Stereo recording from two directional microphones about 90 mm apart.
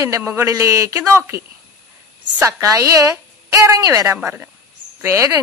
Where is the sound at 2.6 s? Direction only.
40° right (ahead or behind).